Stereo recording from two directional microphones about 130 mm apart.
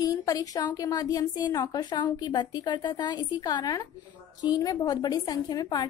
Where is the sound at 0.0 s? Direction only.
30° left (ahead or behind).